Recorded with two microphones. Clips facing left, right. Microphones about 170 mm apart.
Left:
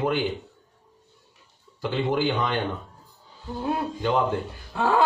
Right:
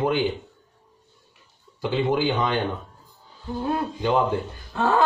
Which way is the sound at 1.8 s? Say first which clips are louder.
Right 2 dB; 15° right (ahead or behind).